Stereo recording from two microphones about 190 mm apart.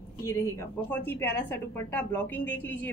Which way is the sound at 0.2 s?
15° left (ahead or behind).